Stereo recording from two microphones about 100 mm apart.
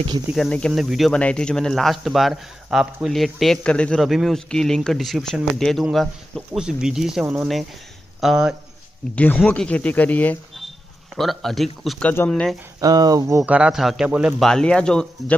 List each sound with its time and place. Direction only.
0.4 s speech: 10° left (ahead or behind)
1.1 s speech: 10° left (ahead or behind)
4.0 s speech: centre (ahead or behind)
9.1 s speech: 15° left (ahead or behind)
11.1 s speech: centre (ahead or behind)
12.0 s speech: 20° left (ahead or behind)
12.3 s speech: 5° left (ahead or behind)
12.8 s speech: 40° right (ahead or behind)
13.5 s speech: 10° right (ahead or behind)
14.4 s speech: 5° left (ahead or behind)